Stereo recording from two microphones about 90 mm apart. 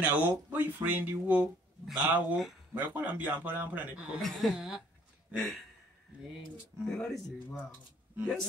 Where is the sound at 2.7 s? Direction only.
20° right (ahead or behind).